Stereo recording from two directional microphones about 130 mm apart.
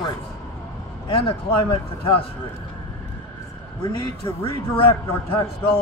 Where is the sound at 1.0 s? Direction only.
45° left (ahead or behind).